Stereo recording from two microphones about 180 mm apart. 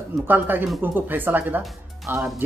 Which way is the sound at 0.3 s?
10° right (ahead or behind).